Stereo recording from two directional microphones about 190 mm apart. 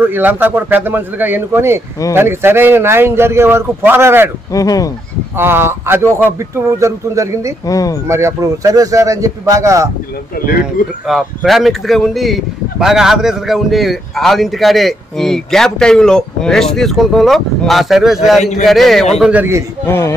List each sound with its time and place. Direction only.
0.1 s a man's voice: 10° right (ahead or behind)
4.5 s speech: 20° left (ahead or behind)
5.4 s a man's voice: 10° right (ahead or behind)
7.6 s speech: 20° left (ahead or behind)
8.1 s a man's voice: 15° right (ahead or behind)
10.6 s speech: centre (ahead or behind)
19.9 s speech: 15° left (ahead or behind)